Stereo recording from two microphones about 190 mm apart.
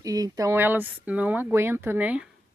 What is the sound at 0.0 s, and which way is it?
A woman's voice, 20° right (ahead or behind).